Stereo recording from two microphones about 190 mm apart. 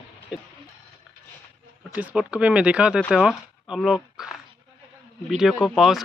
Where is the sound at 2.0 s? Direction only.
5° right (ahead or behind).